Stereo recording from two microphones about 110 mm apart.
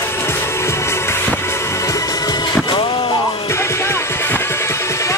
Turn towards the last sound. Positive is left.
turn(degrees=25)  # may be behind; listen again after turning